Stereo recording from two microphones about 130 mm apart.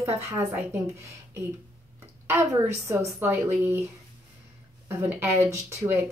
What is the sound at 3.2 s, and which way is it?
Speech, 15° right (ahead or behind).